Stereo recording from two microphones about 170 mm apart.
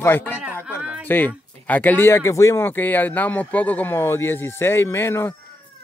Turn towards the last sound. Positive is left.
turn(degrees=15)  # may be behind; listen again after turning